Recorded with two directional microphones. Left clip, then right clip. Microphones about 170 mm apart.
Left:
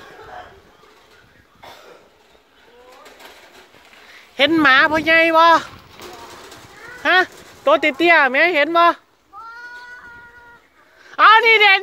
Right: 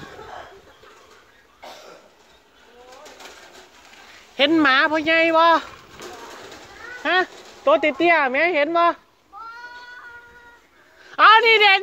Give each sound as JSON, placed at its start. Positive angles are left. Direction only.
{"t": 4.4, "sound": "speech", "side_deg": 10}
{"t": 7.0, "sound": "speech", "side_deg": 15}
{"t": 9.5, "sound": "child singing", "side_deg": 75}
{"t": 11.1, "sound": "a sound", "side_deg": 0}